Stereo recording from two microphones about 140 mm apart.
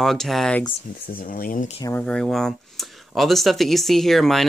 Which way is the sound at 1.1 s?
90° left.